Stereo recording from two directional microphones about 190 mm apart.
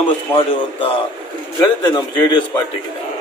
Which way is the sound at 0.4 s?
30° left (ahead or behind).